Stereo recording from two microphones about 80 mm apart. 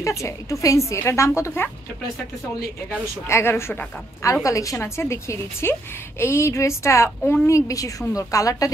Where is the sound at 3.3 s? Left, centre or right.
Left.